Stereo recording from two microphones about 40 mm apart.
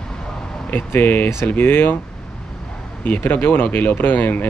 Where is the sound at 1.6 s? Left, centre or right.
Left.